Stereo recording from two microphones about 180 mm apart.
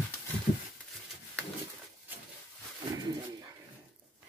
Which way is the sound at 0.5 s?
45° left (ahead or behind).